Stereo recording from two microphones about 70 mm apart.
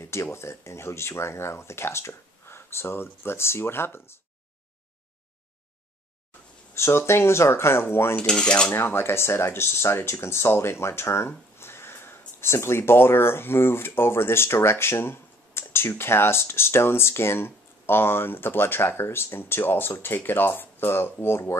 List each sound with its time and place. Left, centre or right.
0.0 s speech: left
6.7 s speech: left
8.2 s cutlery: centre
8.8 s speech: left